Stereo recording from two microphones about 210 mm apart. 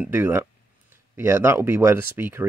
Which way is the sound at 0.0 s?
10° right (ahead or behind).